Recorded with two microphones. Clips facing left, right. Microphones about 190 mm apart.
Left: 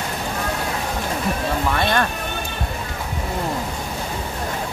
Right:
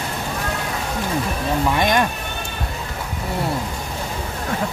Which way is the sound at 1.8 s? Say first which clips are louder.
Right 2 dB; 15° right (ahead or behind).